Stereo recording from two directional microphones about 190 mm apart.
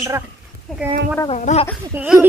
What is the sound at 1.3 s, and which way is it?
Speech, 35° left (ahead or behind).